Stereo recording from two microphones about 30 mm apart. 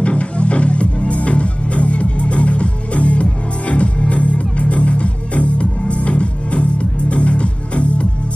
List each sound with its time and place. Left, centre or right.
0.0 s music: left